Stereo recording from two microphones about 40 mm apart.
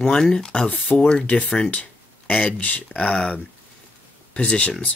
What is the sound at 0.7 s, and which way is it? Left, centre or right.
Speech, left.